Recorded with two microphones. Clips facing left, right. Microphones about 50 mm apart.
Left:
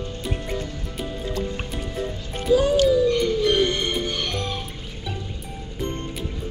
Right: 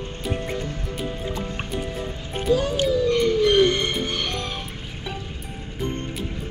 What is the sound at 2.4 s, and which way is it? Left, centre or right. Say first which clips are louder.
Music: left 3 dB; centre.